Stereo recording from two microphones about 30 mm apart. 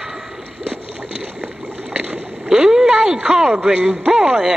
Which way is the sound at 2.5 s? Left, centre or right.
Right.